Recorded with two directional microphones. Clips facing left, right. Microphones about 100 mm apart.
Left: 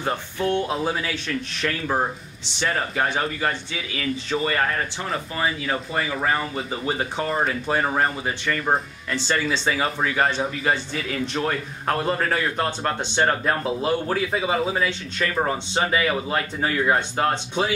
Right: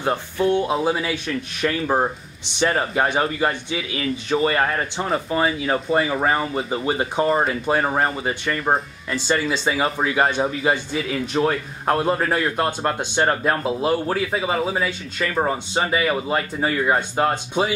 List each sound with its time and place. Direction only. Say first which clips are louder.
0.0 s a man's voice: right 4 dB; 10° right (ahead or behind)
2.7 s a man's voice: right 2 dB; 30° right (ahead or behind); by 17.7 s 10° right (ahead or behind)